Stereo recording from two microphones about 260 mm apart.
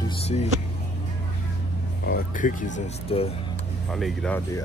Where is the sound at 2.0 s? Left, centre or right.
Left.